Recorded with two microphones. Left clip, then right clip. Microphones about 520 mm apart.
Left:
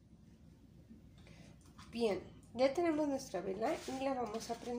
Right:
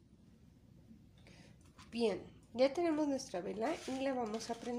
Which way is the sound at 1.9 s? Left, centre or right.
Right.